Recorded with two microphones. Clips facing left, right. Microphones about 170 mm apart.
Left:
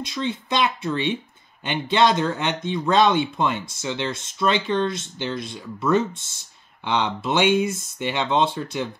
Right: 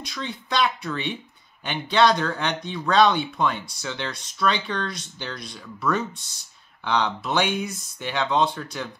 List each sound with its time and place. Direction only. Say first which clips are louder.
0.0 s speech: left 6 dB; 20° left (ahead or behind)